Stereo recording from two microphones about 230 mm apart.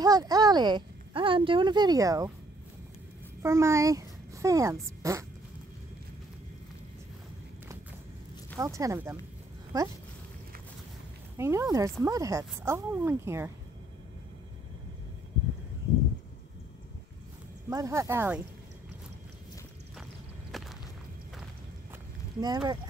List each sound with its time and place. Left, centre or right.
0.0 s speech: centre
3.4 s a child's voice: centre
8.5 s speech: centre
11.3 s speech: centre
17.6 s speech: centre
20.5 s a sound: centre
22.4 s speech: centre